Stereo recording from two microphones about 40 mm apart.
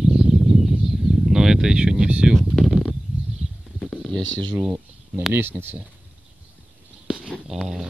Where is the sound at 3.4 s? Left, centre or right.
Right.